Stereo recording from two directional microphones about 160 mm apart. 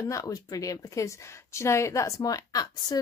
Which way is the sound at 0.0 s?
20° left (ahead or behind).